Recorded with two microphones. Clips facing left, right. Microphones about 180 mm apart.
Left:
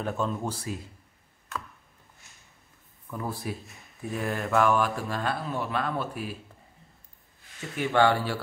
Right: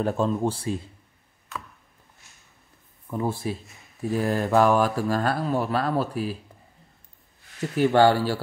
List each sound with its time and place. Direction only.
0.0 s a man's voice: 35° right (ahead or behind)
1.5 s a sound: centre (ahead or behind)
3.1 s speech: 25° right (ahead or behind)
3.6 s speech: centre (ahead or behind)
4.2 s speech: 35° right (ahead or behind)
7.6 s speech: centre (ahead or behind)
7.9 s speech: 35° right (ahead or behind)